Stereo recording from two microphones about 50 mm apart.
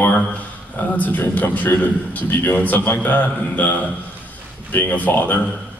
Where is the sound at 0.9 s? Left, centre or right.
Left.